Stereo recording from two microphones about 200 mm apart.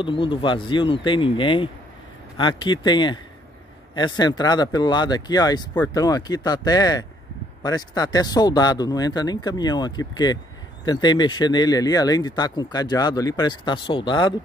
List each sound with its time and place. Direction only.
0.0 s speech: 25° left (ahead or behind)